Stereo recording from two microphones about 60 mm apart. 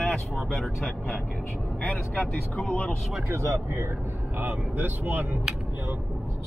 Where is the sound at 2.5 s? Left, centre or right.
Centre.